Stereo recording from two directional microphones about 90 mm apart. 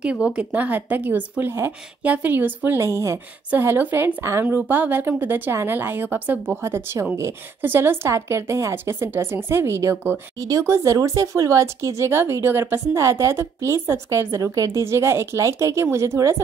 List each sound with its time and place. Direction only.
0.0 s a woman's voice: 10° right (ahead or behind); by 16.3 s 30° right (ahead or behind)